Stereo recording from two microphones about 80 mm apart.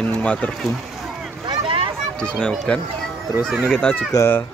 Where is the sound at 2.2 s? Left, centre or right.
Centre.